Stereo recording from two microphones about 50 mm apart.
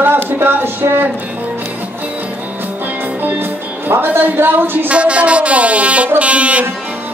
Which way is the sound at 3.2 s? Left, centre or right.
Right.